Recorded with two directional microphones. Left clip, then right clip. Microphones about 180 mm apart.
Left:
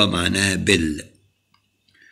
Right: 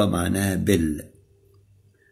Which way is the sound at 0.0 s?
35° right (ahead or behind).